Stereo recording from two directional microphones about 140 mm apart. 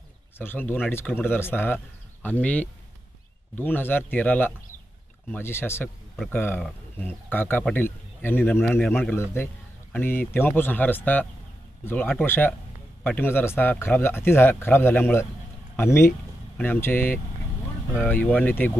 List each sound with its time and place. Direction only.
0.4 s speech: 15° left (ahead or behind)